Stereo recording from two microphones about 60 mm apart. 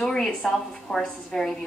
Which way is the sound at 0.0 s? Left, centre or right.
Centre.